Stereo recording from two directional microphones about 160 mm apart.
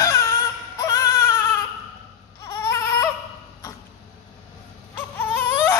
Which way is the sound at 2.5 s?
20° left (ahead or behind).